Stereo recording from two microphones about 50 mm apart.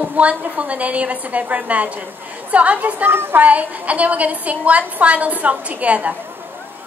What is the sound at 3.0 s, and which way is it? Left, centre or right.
Speech, right.